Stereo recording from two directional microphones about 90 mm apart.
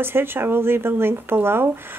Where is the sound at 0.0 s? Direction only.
25° right (ahead or behind).